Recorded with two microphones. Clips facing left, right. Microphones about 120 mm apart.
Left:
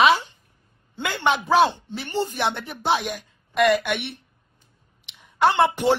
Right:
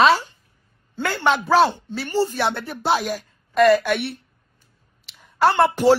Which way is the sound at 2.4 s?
55° right (ahead or behind).